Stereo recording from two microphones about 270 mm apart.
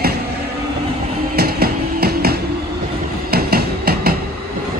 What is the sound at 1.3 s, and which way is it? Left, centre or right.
Music, right.